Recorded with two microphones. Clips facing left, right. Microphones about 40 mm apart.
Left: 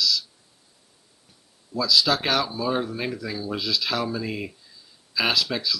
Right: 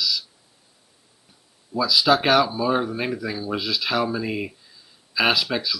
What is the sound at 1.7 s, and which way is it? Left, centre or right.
Speech, centre.